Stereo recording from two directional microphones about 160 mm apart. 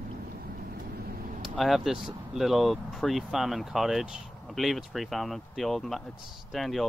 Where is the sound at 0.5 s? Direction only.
70° right (ahead or behind).